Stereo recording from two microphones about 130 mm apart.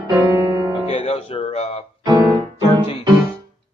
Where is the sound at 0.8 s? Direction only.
50° left (ahead or behind).